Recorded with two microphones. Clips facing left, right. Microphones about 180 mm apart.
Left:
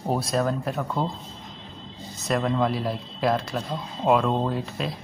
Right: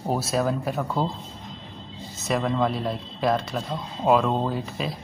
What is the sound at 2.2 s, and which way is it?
Speech, centre (ahead or behind).